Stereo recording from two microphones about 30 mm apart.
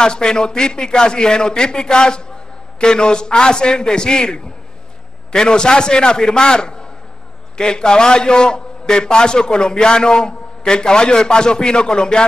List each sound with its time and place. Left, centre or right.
0.0 s a man's voice: left